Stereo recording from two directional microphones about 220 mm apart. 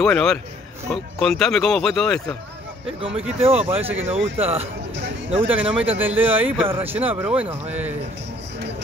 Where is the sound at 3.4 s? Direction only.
25° right (ahead or behind).